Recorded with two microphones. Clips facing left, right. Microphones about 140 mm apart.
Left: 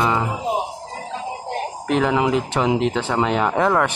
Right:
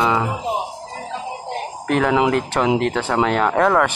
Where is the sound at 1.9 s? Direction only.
Centre (ahead or behind).